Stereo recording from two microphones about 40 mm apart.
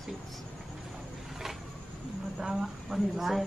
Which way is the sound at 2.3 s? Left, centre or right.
Centre.